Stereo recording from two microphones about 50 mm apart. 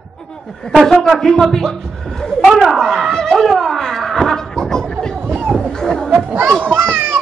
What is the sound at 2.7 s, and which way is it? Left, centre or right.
Speech, centre.